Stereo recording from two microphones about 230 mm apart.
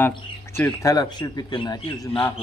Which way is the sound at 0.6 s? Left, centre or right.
Centre.